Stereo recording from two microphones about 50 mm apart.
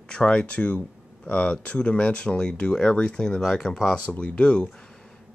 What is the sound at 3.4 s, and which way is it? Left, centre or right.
Speech, centre.